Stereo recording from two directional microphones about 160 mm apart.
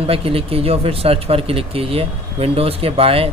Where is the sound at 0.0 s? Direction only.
35° right (ahead or behind).